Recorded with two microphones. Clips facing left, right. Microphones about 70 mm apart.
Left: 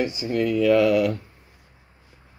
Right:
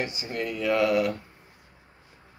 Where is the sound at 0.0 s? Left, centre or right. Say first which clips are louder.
Left 7 dB; right.